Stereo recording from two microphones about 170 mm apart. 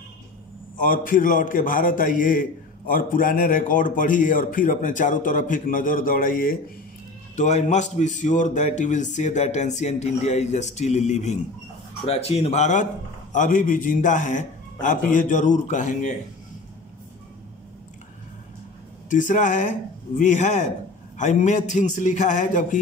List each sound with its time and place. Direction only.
0.7 s a man's voice: 50° left (ahead or behind)
19.0 s a man's voice: 50° left (ahead or behind)